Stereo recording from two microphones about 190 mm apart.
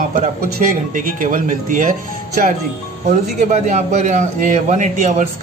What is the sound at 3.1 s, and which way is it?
A man's voice, 40° right (ahead or behind).